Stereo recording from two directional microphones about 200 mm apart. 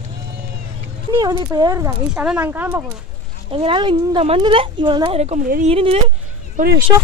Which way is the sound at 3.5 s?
25° right (ahead or behind).